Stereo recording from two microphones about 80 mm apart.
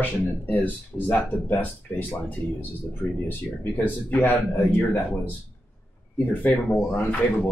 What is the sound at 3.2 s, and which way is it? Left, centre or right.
Speech, left.